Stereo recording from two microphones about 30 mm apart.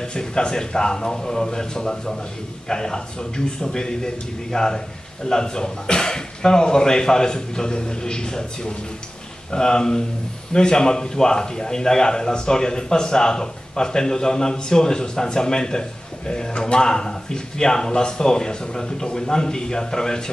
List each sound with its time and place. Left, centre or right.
0.0 s a man's voice: left